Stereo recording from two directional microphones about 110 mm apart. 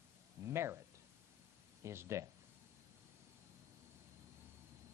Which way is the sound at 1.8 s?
25° right (ahead or behind).